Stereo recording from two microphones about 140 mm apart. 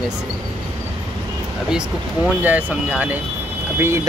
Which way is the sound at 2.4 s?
10° right (ahead or behind).